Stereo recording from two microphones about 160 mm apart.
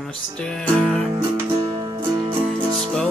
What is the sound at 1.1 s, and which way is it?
Music, 20° right (ahead or behind).